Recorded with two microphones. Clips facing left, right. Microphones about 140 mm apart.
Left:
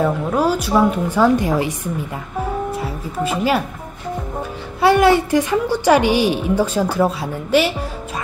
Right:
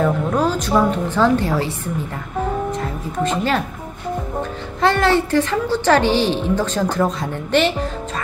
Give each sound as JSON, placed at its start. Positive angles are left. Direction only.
{"t": 0.0, "sound": "a woman's voice", "side_deg": 10}
{"t": 4.8, "sound": "a woman's voice", "side_deg": 10}